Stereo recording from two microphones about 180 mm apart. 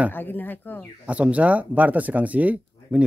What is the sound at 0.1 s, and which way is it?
Speech, 10° left (ahead or behind).